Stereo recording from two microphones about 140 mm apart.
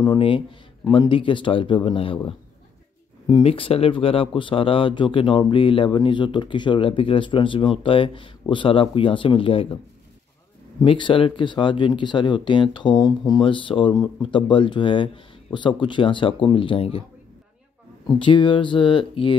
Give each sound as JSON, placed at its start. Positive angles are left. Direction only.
{"t": 0.0, "sound": "speech", "side_deg": 35}
{"t": 3.3, "sound": "speech", "side_deg": 40}
{"t": 10.8, "sound": "speech", "side_deg": 35}
{"t": 13.4, "sound": "speech", "side_deg": 35}
{"t": 18.0, "sound": "speech", "side_deg": 35}